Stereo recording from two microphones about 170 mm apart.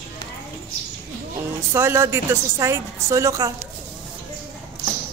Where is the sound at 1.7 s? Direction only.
15° right (ahead or behind).